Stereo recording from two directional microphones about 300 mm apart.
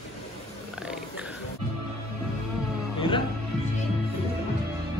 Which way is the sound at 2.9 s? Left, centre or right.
Centre.